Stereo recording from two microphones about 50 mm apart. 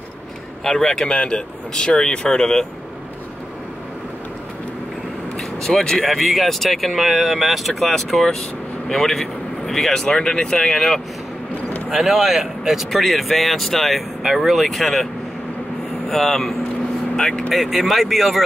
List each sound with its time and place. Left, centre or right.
0.7 s speech: centre
5.6 s speech: centre
6.0 s speech: centre
11.9 s speech: centre
16.1 s speech: centre
17.6 s speech: centre